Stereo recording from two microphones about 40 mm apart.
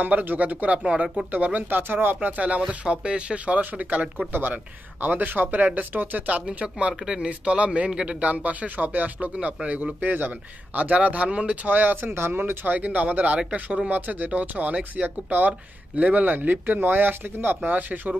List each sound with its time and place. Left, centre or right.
0.4 s speech: right
0.8 s speech: right
1.7 s speech: right
2.1 s speech: right
4.3 s speech: right
6.4 s speech: right
8.2 s speech: right
10.1 s speech: right
10.8 s speech: right
12.6 s speech: right
13.8 s speech: right
17.6 s speech: right